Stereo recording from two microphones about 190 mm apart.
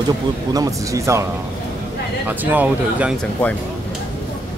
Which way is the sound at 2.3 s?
10° right (ahead or behind).